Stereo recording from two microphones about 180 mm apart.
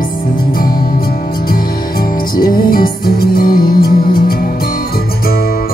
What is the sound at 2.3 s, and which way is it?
Music, 55° left (ahead or behind).